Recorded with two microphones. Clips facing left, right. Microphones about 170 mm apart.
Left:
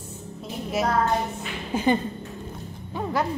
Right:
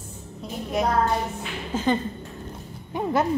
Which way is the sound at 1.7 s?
15° left (ahead or behind).